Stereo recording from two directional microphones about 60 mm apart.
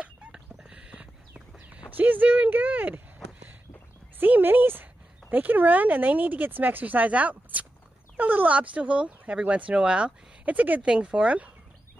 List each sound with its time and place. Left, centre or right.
0.0 s fowl: centre
4.2 s speech: right